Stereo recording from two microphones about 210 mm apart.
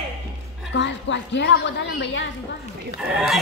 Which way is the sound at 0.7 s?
60° left (ahead or behind).